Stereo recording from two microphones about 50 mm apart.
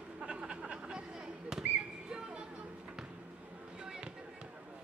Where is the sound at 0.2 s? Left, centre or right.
Right.